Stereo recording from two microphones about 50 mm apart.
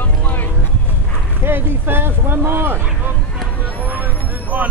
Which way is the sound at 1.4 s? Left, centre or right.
Right.